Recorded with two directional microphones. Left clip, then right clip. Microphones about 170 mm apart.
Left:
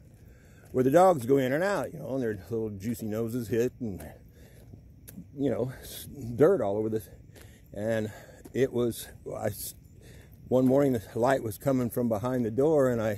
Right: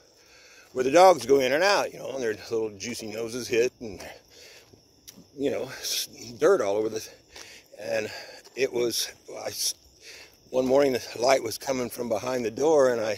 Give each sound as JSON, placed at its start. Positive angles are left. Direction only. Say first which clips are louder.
{"t": 0.7, "sound": "speech", "louder": "right 4 dB", "side_deg": -20}
{"t": 5.4, "sound": "speech", "louder": "right 2 dB", "side_deg": -30}